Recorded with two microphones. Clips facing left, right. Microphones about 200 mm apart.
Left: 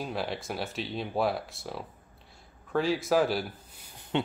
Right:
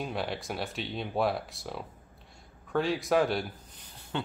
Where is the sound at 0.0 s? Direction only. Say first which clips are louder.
Even; centre (ahead or behind).